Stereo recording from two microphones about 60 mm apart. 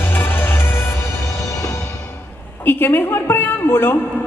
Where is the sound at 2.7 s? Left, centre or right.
Left.